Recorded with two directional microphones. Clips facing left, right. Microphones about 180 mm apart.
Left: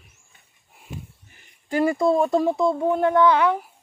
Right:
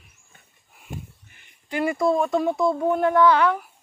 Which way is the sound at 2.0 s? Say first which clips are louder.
Right 1 dB; 30° left (ahead or behind).